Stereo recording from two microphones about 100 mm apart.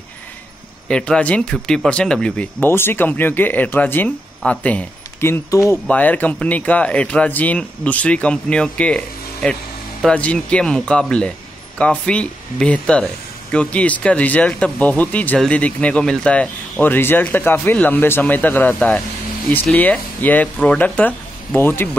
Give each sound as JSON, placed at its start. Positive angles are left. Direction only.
{"t": 0.8, "sound": "speech", "side_deg": 10}
{"t": 2.6, "sound": "speech", "side_deg": 20}
{"t": 5.2, "sound": "speech", "side_deg": 25}